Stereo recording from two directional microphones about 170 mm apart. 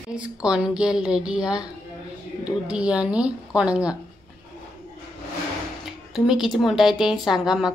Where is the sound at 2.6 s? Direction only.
5° right (ahead or behind).